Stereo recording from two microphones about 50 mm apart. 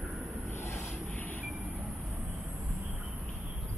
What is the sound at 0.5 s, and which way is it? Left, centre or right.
Vehicle, left.